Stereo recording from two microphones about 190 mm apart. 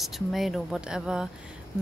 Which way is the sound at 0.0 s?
Centre (ahead or behind).